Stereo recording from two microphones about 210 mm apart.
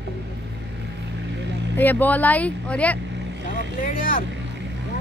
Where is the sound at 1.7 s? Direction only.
10° left (ahead or behind).